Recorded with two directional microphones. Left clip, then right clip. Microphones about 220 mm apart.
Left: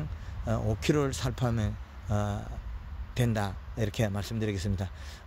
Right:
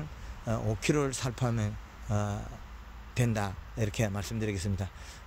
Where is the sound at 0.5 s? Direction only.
15° left (ahead or behind).